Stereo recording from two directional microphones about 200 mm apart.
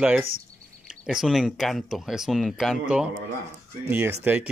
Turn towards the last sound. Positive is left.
turn(degrees=-10)  # may be behind; listen again after turning